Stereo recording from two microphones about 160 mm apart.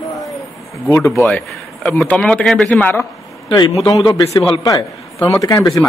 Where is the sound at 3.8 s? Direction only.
30° left (ahead or behind).